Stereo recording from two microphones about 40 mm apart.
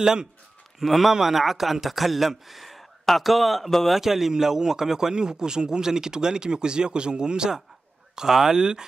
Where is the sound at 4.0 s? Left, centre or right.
Centre.